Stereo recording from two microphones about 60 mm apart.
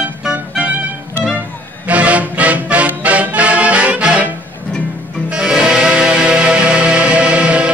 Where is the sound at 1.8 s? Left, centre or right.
Right.